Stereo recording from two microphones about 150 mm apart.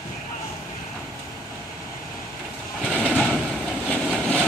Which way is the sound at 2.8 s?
5° left (ahead or behind).